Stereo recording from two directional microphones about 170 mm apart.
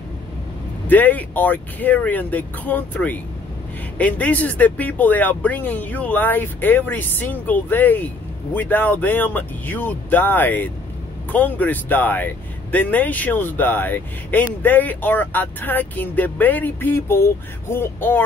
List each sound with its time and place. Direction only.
0.8 s speech: 10° left (ahead or behind)